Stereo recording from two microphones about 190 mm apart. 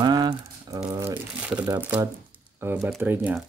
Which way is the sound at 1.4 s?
5° right (ahead or behind).